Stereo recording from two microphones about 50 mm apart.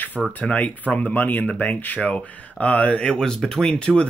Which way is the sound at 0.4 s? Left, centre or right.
Left.